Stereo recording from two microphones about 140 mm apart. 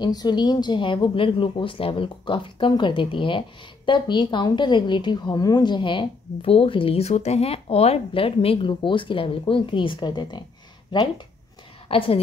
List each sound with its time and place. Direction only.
0.0 s speech: 30° left (ahead or behind)